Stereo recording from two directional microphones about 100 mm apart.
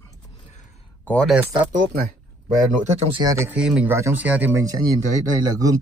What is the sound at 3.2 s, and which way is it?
Speech, 30° right (ahead or behind).